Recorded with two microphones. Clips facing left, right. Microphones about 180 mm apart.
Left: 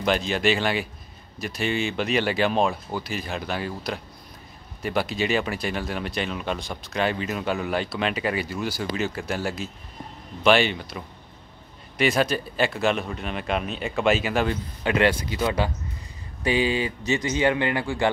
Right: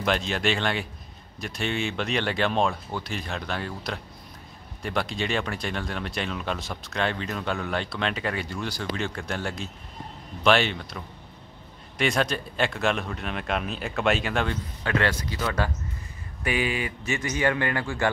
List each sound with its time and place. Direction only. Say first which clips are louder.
0.0 s speech: left 3 dB; centre (ahead or behind)
14.8 s speech: left 5 dB; 15° left (ahead or behind)
16.4 s speech: left 4 dB; 30° left (ahead or behind)